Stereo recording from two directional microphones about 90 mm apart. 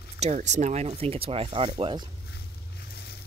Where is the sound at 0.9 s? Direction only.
90° right.